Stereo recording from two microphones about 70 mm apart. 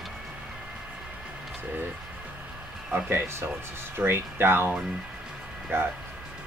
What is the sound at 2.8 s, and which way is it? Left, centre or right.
Speech, right.